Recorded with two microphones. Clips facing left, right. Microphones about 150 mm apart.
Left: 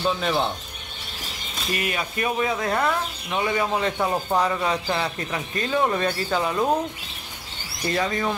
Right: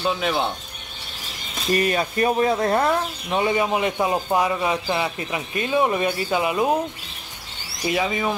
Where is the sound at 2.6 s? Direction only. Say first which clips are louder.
Right 3 dB; 25° right (ahead or behind).